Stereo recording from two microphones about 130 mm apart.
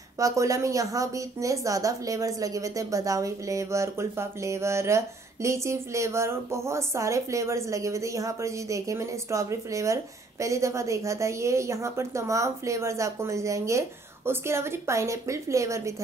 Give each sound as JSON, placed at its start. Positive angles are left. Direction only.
{"t": 0.2, "sound": "a woman's voice", "side_deg": -25}